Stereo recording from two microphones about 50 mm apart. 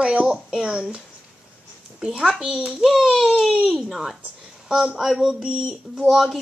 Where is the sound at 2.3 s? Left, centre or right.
Centre.